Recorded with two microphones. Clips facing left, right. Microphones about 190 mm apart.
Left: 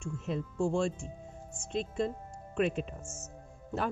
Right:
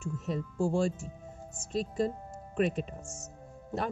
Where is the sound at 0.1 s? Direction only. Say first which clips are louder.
Left 1 dB; 40° right (ahead or behind).